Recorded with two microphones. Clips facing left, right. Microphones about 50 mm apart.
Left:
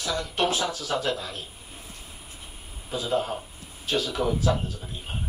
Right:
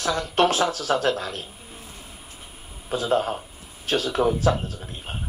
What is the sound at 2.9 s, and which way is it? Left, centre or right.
Speech, right.